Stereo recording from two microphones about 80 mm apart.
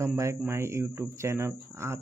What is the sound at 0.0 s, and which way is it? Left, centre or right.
Speech, right.